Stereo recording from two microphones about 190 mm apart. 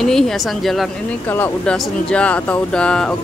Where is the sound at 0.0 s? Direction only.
Centre (ahead or behind).